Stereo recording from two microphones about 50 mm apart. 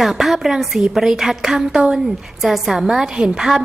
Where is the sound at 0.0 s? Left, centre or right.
Centre.